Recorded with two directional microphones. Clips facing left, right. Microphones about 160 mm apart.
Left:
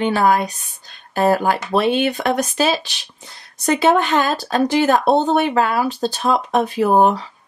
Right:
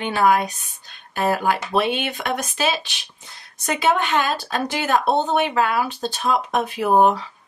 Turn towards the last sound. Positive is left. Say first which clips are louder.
# left 2 dB
turn(degrees=35)  # may be behind; listen again after turning